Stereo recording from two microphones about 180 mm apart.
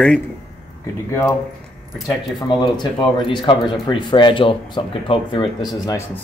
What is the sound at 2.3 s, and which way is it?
Speech, 25° left (ahead or behind).